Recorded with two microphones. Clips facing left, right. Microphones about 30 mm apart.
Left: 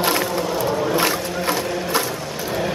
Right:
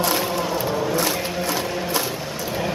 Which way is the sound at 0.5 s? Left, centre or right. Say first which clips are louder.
Left 2 dB; centre.